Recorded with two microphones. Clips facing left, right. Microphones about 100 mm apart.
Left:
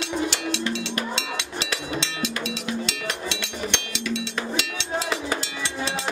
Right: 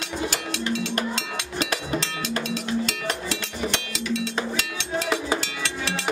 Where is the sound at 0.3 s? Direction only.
45° right (ahead or behind).